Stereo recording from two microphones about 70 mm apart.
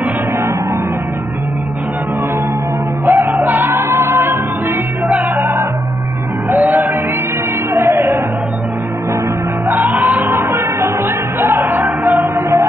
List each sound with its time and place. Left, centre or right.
3.1 s music: right
7.7 s music: right
9.8 s music: right
12.2 s music: right